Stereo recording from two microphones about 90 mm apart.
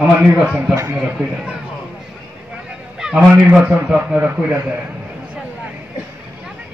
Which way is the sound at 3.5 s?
10° right (ahead or behind).